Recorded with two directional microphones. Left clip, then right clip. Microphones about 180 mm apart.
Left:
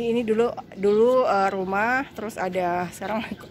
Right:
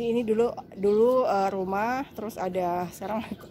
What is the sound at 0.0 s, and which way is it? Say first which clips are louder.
Speech: left 2 dB; 5° right (ahead or behind).